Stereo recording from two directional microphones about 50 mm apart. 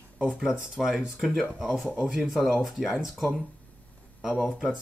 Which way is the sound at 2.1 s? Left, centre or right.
Centre.